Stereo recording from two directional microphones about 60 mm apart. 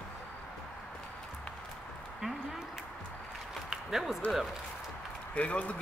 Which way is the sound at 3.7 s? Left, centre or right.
Centre.